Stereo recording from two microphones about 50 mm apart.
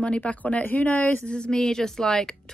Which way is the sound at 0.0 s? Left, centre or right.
Left.